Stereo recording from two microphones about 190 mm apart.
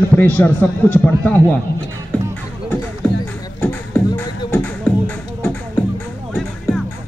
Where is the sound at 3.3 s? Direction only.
10° left (ahead or behind).